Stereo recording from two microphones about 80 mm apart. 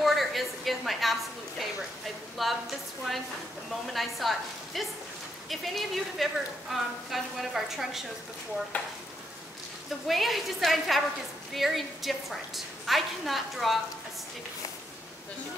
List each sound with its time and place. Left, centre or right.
0.0 s a sound: centre
2.3 s a woman's voice: centre
9.8 s a woman's voice: centre